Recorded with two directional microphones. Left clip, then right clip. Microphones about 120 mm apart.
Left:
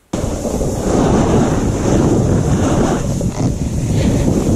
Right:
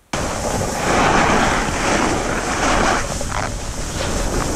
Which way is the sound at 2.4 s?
40° right (ahead or behind).